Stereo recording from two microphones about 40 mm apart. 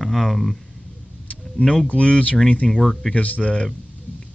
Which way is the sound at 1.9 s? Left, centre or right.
Left.